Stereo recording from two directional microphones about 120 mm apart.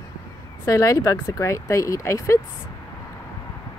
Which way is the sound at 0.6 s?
25° left (ahead or behind).